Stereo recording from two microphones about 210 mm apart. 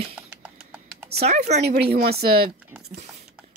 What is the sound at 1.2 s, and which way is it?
Speech, 35° right (ahead or behind).